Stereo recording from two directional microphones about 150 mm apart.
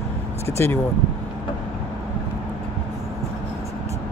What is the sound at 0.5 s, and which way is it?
Speech, 15° left (ahead or behind).